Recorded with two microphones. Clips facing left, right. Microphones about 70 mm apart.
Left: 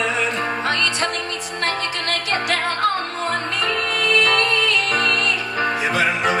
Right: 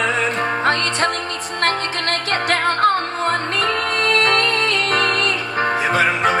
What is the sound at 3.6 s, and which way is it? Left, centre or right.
Music, right.